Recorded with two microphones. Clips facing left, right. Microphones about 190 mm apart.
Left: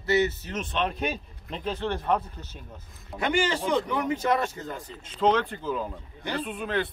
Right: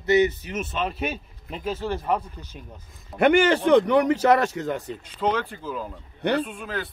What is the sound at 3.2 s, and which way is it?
A man's voice, 60° right (ahead or behind).